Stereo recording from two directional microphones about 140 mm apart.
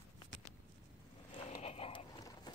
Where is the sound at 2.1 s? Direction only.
25° left (ahead or behind).